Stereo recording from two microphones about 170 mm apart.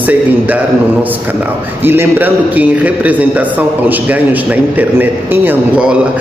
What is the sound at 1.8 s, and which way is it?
A man's voice, 10° right (ahead or behind).